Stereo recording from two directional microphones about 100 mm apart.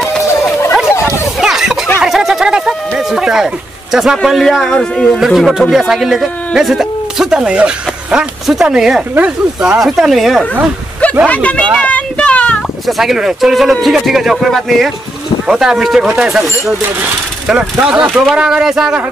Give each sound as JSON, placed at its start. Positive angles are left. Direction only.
{"t": 0.2, "sound": "chatter", "side_deg": 30}
{"t": 1.4, "sound": "a sound", "side_deg": -5}
{"t": 5.2, "sound": "speech", "side_deg": -5}
{"t": 11.2, "sound": "speech", "side_deg": 15}
{"t": 11.8, "sound": "a sound", "side_deg": 15}
{"t": 12.8, "sound": "speech", "side_deg": 0}